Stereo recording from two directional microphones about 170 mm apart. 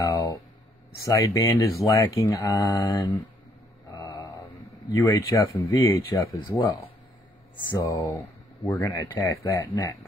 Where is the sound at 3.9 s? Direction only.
25° left (ahead or behind).